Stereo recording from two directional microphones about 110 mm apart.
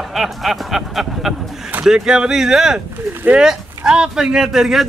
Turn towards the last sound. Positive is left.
turn(degrees=0)  # may be behind; listen again after turning